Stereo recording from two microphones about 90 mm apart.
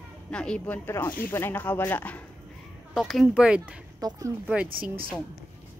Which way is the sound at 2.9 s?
Centre (ahead or behind).